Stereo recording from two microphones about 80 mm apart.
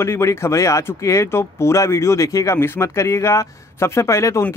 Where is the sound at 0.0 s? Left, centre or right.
Left.